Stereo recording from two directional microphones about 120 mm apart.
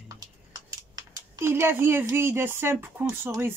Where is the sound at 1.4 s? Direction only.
20° right (ahead or behind).